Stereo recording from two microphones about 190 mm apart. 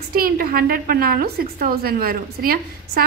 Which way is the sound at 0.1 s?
50° right (ahead or behind).